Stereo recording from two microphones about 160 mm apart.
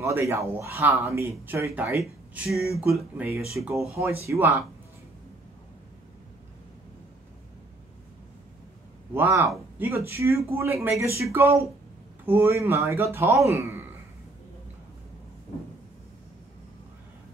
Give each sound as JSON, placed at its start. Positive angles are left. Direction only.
{"t": 0.0, "sound": "speech", "side_deg": -15}
{"t": 2.4, "sound": "speech", "side_deg": 0}
{"t": 3.9, "sound": "speech", "side_deg": -20}
{"t": 9.1, "sound": "speech", "side_deg": -15}